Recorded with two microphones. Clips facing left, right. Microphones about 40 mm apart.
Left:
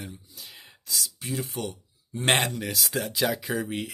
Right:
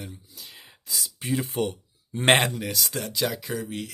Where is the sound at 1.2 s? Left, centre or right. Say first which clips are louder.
Right 9 dB; right.